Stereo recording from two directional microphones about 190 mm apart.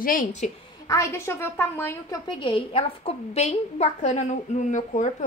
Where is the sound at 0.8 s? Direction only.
15° left (ahead or behind).